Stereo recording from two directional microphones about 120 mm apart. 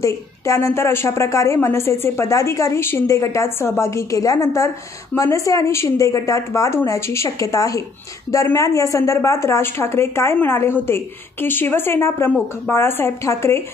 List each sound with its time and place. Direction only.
0.0 s a woman's voice: 25° left (ahead or behind)